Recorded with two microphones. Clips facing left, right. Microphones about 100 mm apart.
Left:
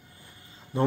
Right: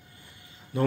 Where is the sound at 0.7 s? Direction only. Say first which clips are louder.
Left 1 dB; 30° left (ahead or behind).